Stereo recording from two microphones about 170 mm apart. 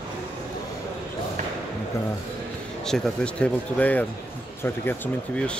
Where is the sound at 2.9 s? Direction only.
5° left (ahead or behind).